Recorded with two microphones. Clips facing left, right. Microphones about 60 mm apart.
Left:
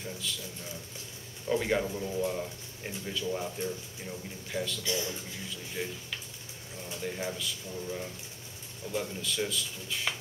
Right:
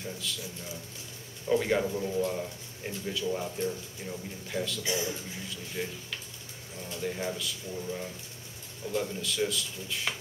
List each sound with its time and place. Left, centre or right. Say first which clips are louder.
0.0 s a man's voice: right 1 dB; centre
1.5 s a man's voice: right 2 dB; centre
4.8 s speech: right 2 dB; centre
5.5 s a man's voice: even; centre